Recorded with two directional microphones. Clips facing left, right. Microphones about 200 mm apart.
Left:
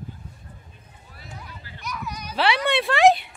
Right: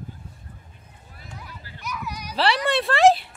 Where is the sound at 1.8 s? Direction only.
10° right (ahead or behind).